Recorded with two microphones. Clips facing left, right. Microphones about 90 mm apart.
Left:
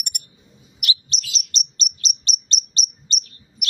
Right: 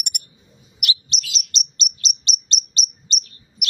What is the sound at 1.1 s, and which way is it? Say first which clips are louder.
Chirp: right 1 dB; 40° left (ahead or behind).